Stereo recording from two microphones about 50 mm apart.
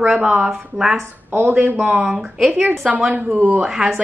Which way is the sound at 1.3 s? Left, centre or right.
Right.